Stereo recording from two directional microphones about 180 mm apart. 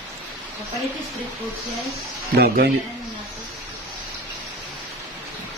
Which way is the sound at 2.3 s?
60° right (ahead or behind).